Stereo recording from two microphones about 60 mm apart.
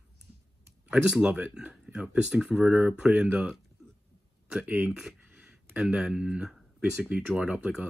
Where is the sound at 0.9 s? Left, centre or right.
Centre.